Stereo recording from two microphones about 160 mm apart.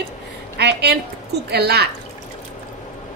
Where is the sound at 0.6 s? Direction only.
90° right.